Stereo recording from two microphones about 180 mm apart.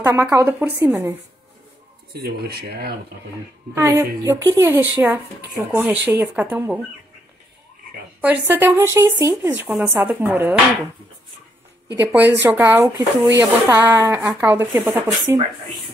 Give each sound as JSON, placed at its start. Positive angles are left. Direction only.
{"t": 0.0, "sound": "speech", "side_deg": -15}
{"t": 2.1, "sound": "speech", "side_deg": -60}
{"t": 3.7, "sound": "speech", "side_deg": -15}
{"t": 8.2, "sound": "speech", "side_deg": -10}
{"t": 11.9, "sound": "speech", "side_deg": -10}